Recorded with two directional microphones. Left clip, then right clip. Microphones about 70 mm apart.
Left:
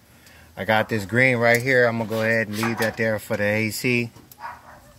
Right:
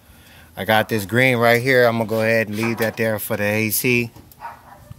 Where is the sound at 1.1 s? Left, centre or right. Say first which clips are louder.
Right 2 dB; right.